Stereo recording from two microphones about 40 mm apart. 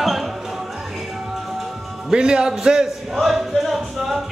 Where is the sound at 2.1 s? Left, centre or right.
Right.